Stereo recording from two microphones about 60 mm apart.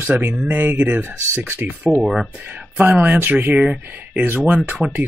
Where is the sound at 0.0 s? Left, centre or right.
Right.